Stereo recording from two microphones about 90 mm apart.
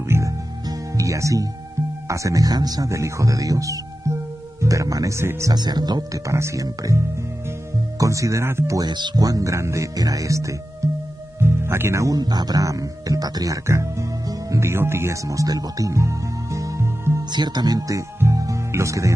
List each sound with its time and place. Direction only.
0.1 s music: 25° right (ahead or behind)
2.0 s speech: 40° right (ahead or behind)
5.5 s speech: 50° right (ahead or behind)
6.2 s speech: 35° right (ahead or behind)
8.0 s speech: 35° right (ahead or behind)
8.7 s speech: 55° right (ahead or behind); by 17.2 s 30° right (ahead or behind)
17.3 s speech: 55° right (ahead or behind); by 19.1 s 35° right (ahead or behind)